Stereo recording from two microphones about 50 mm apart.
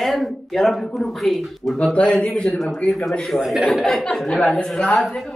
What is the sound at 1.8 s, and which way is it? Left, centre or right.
Speech, left.